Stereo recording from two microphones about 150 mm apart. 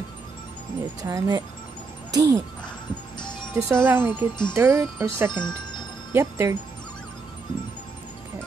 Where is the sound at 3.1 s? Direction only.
30° left (ahead or behind).